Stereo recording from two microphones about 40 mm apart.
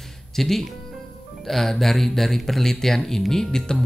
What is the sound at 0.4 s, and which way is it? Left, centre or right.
Speech, centre.